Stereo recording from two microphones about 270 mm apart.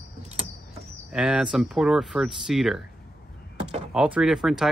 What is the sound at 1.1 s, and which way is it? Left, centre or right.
Speech, centre.